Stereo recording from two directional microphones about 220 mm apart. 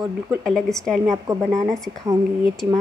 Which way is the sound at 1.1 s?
15° right (ahead or behind).